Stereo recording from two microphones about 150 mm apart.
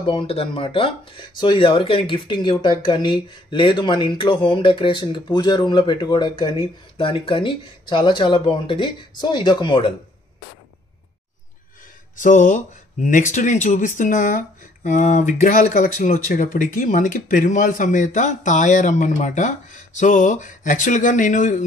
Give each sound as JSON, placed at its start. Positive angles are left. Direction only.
{"t": 0.0, "sound": "speech", "side_deg": 35}
{"t": 12.2, "sound": "speech", "side_deg": 60}